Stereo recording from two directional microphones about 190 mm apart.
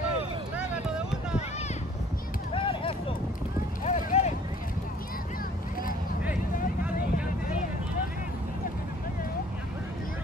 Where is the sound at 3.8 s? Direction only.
35° left (ahead or behind).